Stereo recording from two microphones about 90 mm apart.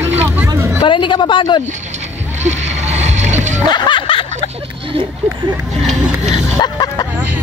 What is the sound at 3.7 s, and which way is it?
Snicker, 60° left (ahead or behind).